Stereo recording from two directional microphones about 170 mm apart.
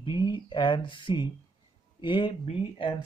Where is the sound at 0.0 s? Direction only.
25° left (ahead or behind).